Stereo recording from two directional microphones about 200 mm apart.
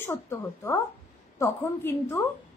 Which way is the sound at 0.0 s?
10° left (ahead or behind).